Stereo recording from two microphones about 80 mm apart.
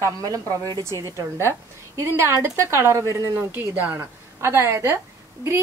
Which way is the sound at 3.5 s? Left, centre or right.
Right.